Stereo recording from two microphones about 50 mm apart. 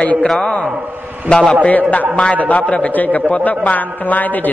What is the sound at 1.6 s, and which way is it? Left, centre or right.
A man's voice, left.